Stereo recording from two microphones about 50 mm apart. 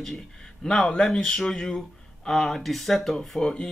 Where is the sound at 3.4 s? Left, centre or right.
Centre.